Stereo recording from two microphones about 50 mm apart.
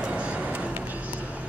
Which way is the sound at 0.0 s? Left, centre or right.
Right.